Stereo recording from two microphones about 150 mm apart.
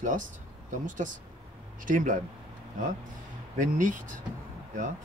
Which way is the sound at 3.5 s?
60° right (ahead or behind).